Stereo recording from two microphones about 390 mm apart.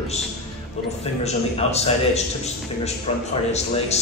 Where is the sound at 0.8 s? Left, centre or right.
Centre.